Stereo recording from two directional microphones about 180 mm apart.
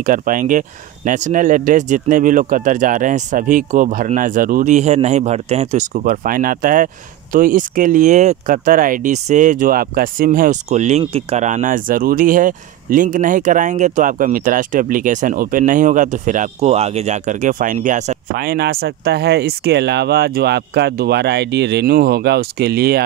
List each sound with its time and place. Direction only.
0.0 s speech: 50° right (ahead or behind)